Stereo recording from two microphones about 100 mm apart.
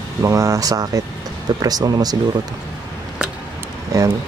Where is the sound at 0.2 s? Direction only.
30° right (ahead or behind).